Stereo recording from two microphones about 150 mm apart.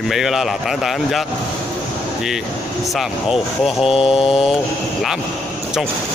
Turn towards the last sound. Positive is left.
turn(degrees=40)  # may be behind; listen again after turning